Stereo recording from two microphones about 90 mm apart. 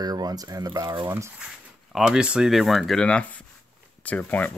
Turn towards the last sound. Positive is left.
turn(degrees=15)  # may be behind; listen again after turning